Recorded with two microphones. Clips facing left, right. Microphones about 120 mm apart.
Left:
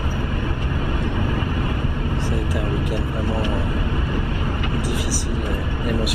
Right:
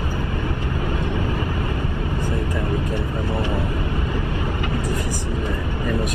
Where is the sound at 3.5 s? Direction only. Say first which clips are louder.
Even; 25° right (ahead or behind).